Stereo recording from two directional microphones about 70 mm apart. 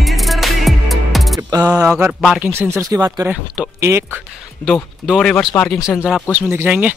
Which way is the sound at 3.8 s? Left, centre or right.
Right.